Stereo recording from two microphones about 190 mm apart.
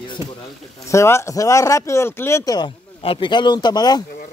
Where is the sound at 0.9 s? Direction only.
15° left (ahead or behind).